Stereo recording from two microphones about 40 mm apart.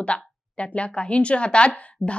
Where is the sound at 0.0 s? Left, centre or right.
Left.